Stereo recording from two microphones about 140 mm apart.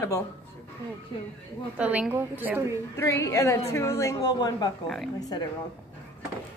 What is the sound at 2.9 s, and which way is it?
A woman's voice, 20° left (ahead or behind).